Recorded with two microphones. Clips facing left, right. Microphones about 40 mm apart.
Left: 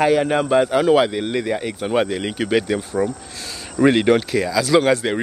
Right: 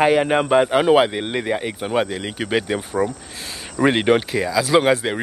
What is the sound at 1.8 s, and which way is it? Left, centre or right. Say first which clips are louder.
Speech: left 2 dB; centre.